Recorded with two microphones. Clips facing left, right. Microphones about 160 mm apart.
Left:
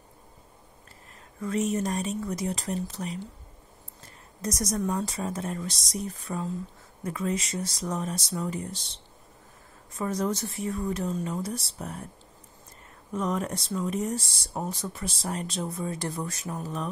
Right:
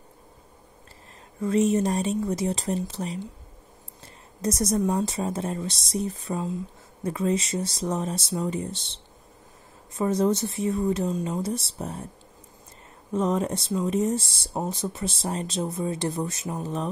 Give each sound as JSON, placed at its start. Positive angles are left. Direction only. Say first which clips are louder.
{"t": 1.4, "sound": "speech", "louder": "right 6 dB", "side_deg": -30}
{"t": 4.4, "sound": "speech", "louder": "right 5 dB", "side_deg": -30}
{"t": 13.1, "sound": "speech", "louder": "right 5 dB", "side_deg": -25}